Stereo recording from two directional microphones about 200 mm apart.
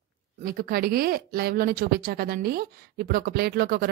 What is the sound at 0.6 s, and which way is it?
Speech, 50° right (ahead or behind).